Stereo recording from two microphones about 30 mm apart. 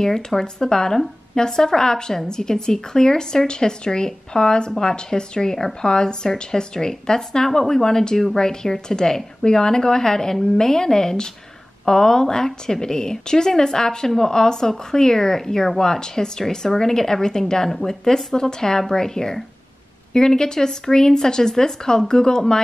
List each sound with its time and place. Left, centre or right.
0.0 s speech: centre